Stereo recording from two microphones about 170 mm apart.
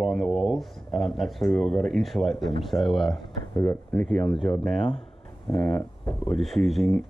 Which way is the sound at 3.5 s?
15° left (ahead or behind).